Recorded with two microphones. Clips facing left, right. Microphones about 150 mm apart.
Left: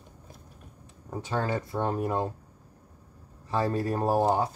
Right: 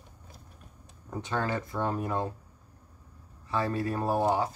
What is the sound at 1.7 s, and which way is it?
Speech, 25° left (ahead or behind).